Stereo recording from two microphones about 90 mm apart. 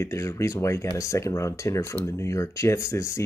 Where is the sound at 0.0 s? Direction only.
35° left (ahead or behind).